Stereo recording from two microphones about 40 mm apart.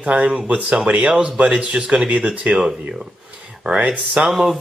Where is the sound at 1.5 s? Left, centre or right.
Right.